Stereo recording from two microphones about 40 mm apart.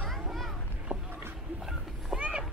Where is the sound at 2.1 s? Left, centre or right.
Centre.